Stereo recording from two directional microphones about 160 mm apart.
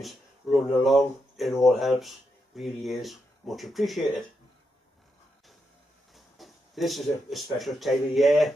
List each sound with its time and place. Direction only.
0.0 s speech: centre (ahead or behind)
6.1 s speech: centre (ahead or behind)